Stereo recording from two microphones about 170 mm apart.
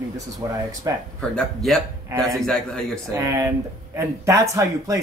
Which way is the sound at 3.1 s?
15° right (ahead or behind).